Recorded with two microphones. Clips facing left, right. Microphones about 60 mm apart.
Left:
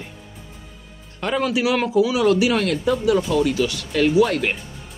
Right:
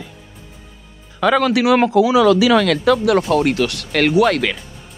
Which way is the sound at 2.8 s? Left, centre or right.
Right.